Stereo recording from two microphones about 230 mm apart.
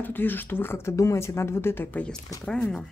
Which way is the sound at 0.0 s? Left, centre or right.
Centre.